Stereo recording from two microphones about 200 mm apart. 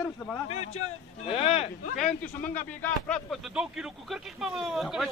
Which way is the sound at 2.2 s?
10° left (ahead or behind).